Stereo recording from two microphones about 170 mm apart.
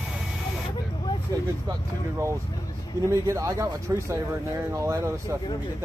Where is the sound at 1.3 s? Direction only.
15° right (ahead or behind).